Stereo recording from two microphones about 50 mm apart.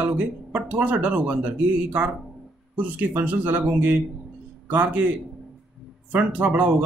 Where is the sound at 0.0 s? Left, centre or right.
Right.